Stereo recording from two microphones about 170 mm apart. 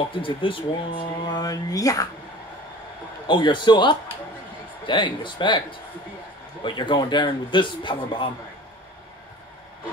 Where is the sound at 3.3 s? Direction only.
30° left (ahead or behind).